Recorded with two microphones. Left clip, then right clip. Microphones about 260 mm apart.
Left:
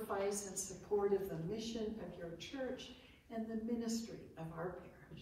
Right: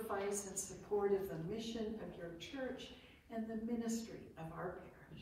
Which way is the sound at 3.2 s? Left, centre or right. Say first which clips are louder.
Left 1 dB; centre.